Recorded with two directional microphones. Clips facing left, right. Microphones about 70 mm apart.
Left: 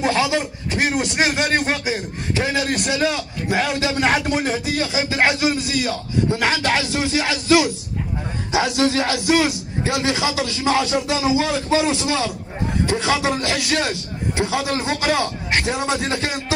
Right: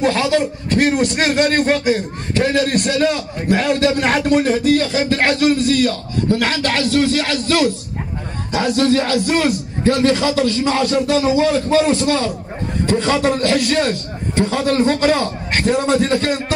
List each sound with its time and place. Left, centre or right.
0.0 s a man's voice: centre
8.7 s a man's voice: centre